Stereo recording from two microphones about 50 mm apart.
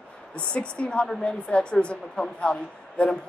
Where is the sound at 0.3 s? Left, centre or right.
Left.